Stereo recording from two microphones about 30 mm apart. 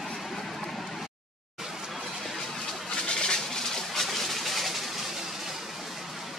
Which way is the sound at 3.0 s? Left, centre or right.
Left.